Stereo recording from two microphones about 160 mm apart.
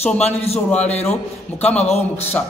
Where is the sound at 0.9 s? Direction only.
40° left (ahead or behind).